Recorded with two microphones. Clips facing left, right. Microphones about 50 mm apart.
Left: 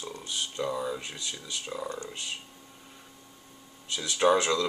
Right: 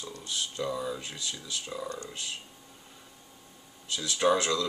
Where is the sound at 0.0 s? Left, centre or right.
Centre.